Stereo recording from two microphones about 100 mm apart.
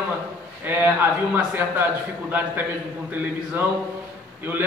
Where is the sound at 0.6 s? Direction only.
20° right (ahead or behind).